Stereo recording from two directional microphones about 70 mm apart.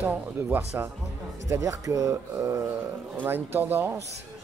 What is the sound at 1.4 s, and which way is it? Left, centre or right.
Speech, right.